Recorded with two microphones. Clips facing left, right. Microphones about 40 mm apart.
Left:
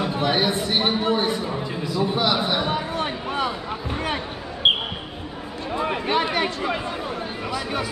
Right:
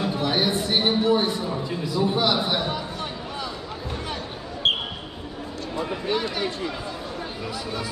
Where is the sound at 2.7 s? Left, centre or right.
Left.